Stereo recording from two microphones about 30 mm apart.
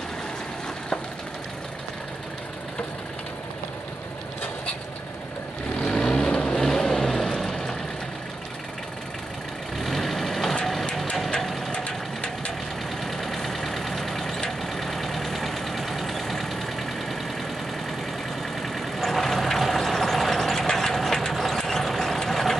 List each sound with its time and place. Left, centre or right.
5.8 s vehicle: left
6.5 s vehicle: centre
9.8 s vehicle: centre
10.6 s a sound: centre
11.7 s a sound: left
13.0 s vehicle: centre
18.6 s vehicle: centre
20.5 s ratchet: centre
21.3 s mechanisms: centre
21.5 s vehicle: centre